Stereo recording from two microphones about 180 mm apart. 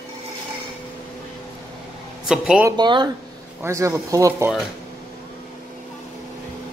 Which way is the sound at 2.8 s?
25° right (ahead or behind).